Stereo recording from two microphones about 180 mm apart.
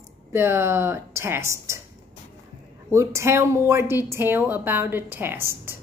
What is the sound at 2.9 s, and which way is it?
Speech, 15° right (ahead or behind).